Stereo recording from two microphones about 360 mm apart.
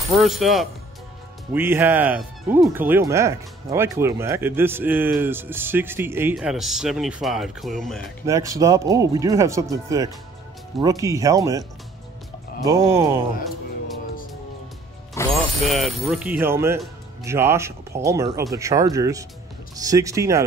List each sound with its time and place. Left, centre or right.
0.1 s speech: centre
12.6 s speech: centre
15.1 s speech: centre